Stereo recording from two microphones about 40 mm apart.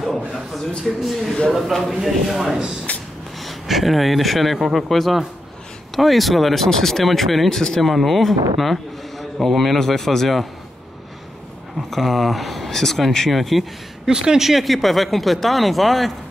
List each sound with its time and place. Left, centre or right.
0.0 s a sound: centre
0.6 s speech: centre
2.0 s speech: centre
7.8 s speech: centre
11.9 s speech: centre
14.0 s speech: centre
14.5 s speech: centre